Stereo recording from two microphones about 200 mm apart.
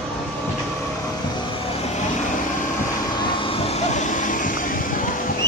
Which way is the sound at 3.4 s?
30° left (ahead or behind).